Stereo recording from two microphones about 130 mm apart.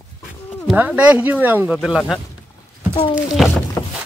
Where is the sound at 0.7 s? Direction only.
5° right (ahead or behind).